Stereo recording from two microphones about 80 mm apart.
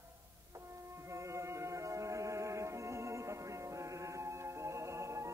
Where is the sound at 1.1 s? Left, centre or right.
Right.